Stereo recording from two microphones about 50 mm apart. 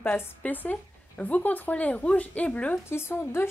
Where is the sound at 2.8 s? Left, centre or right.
Left.